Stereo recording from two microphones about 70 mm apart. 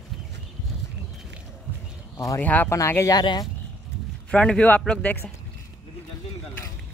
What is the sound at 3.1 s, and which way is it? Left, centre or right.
Speech, left.